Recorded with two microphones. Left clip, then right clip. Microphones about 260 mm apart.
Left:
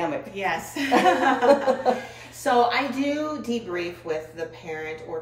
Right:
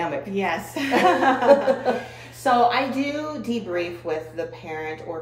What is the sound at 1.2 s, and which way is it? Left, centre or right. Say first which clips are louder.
Chuckle: right 1 dB; centre.